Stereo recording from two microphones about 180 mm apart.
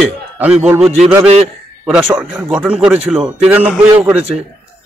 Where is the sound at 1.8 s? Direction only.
5° right (ahead or behind).